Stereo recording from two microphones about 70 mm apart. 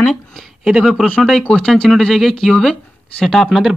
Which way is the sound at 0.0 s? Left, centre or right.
Centre.